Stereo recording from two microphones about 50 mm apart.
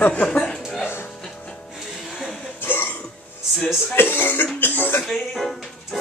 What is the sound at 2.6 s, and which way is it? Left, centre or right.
Hiccup, left.